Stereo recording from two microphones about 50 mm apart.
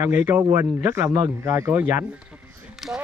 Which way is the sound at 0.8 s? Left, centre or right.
Right.